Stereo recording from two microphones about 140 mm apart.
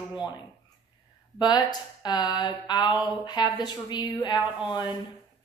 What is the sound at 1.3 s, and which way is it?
Speech, 30° left (ahead or behind).